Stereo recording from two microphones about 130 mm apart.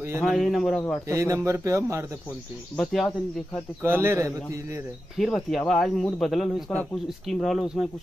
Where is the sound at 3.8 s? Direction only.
20° right (ahead or behind).